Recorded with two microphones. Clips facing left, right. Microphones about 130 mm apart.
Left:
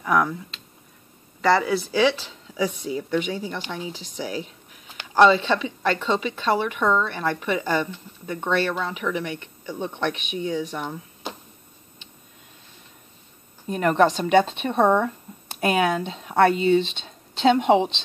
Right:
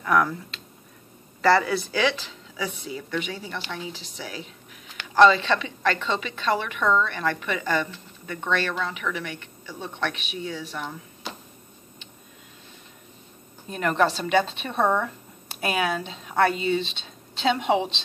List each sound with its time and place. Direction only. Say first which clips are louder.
0.0 s a woman's voice: even; 10° left (ahead or behind)
2.5 s a woman's voice: left 6 dB; 15° left (ahead or behind)
13.7 s a woman's voice: left 4 dB; 20° left (ahead or behind)